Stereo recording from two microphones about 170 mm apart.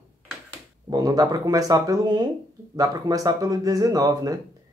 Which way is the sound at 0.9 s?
20° right (ahead or behind).